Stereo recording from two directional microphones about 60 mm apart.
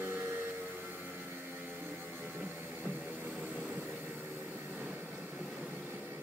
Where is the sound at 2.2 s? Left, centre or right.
Right.